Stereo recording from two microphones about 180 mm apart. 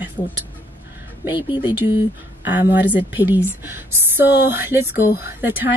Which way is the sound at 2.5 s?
10° right (ahead or behind).